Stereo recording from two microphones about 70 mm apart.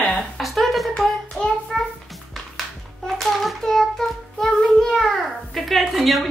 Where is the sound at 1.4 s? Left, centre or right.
Left.